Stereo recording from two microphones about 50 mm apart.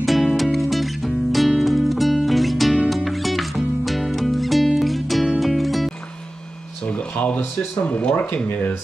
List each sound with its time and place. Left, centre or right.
0.0 s music: centre
6.9 s speech: left